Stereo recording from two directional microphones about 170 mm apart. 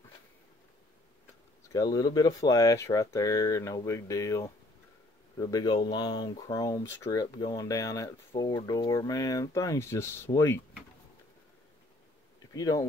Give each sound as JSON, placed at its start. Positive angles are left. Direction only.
{"t": 1.7, "sound": "speech", "side_deg": 20}
{"t": 5.5, "sound": "speech", "side_deg": 25}
{"t": 12.5, "sound": "speech", "side_deg": 20}